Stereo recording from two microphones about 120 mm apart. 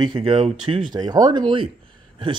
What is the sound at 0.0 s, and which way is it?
Speech, 50° right (ahead or behind).